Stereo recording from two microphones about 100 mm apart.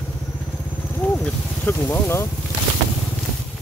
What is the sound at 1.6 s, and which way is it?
Speech, 25° left (ahead or behind).